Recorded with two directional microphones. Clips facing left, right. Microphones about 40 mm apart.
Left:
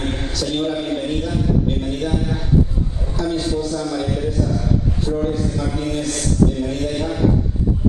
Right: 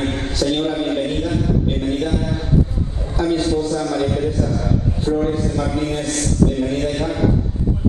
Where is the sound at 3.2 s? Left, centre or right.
Right.